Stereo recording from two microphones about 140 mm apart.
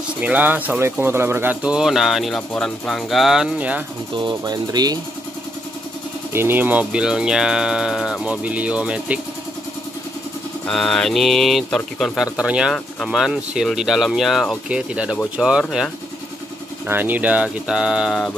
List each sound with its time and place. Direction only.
0.2 s speech: 10° right (ahead or behind)
4.2 s speech: 30° right (ahead or behind)
6.3 s speech: 15° right (ahead or behind)
10.7 s speech: 5° left (ahead or behind)